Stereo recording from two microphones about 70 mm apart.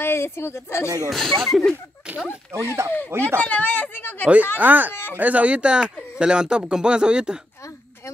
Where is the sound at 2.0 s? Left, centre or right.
Centre.